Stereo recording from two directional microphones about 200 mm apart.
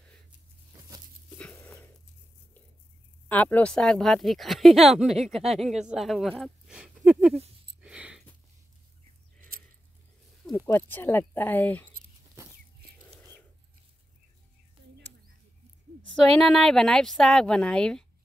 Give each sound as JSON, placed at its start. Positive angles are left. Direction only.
{"t": 0.7, "sound": "patter", "side_deg": -15}
{"t": 1.3, "sound": "a sound", "side_deg": 5}
{"t": 3.3, "sound": "speech", "side_deg": 10}
{"t": 7.8, "sound": "a sound", "side_deg": -5}
{"t": 10.7, "sound": "speech", "side_deg": 10}
{"t": 16.3, "sound": "speech", "side_deg": 5}